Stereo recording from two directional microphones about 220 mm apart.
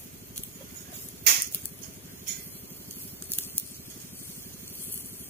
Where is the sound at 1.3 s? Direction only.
45° right (ahead or behind).